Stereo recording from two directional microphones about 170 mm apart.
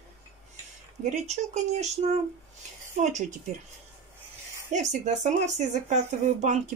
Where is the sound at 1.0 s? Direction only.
45° right (ahead or behind).